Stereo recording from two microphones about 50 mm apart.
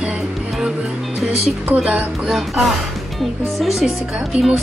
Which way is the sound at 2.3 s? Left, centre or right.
Centre.